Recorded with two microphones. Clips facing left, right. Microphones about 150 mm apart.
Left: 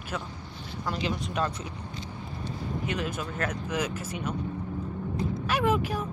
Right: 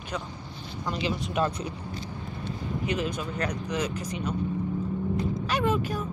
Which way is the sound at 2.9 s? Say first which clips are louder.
Right 4 dB; centre (ahead or behind).